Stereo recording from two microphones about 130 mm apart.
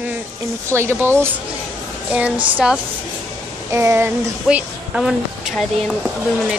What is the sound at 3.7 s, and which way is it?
Speech, 20° right (ahead or behind).